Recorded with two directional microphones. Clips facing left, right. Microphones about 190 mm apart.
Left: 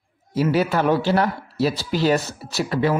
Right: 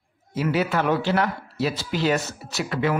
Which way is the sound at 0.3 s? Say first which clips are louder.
Left 3 dB; 35° left (ahead or behind).